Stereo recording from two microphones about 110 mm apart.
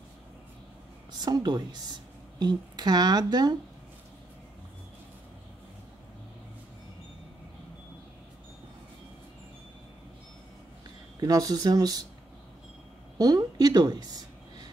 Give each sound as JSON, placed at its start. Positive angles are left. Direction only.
{"t": 1.2, "sound": "speech", "side_deg": -40}
{"t": 11.1, "sound": "speech", "side_deg": -35}
{"t": 13.2, "sound": "speech", "side_deg": -35}